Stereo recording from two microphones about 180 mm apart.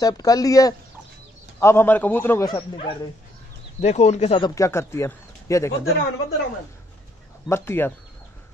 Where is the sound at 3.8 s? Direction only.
35° left (ahead or behind).